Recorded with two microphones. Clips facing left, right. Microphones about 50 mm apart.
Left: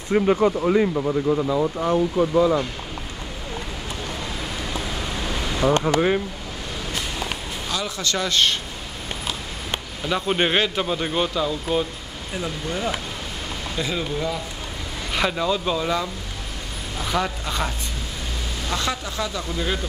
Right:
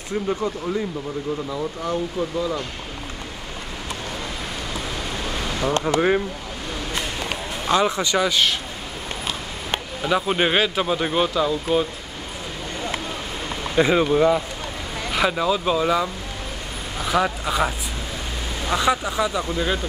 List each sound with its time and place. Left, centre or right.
0.1 s speech: left
0.9 s speech: left
5.6 s speech: centre
5.9 s speech: centre
7.6 s speech: right
8.0 s speech: centre
10.0 s speech: centre
13.7 s speech: right
15.1 s speech: centre